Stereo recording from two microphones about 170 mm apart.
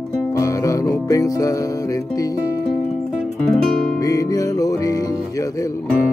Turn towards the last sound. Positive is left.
turn(degrees=20)  # may be behind; listen again after turning